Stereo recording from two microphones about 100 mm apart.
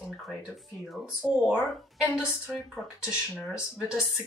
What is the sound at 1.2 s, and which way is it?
Speech, centre (ahead or behind).